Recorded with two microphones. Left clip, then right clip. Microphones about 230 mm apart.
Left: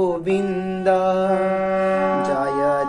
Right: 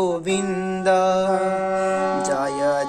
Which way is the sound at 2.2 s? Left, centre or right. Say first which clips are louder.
Left 1 dB; right.